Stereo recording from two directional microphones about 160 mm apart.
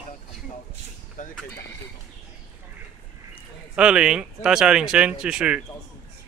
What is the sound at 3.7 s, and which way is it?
Speech, 5° right (ahead or behind).